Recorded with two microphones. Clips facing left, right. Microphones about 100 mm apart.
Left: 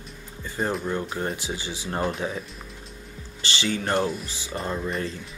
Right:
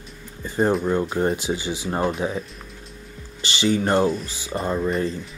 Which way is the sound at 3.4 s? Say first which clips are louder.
Right 6 dB; 20° right (ahead or behind).